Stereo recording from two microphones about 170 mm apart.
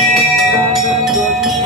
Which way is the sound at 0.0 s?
Centre (ahead or behind).